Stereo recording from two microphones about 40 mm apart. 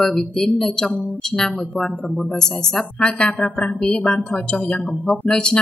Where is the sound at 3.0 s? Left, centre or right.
Left.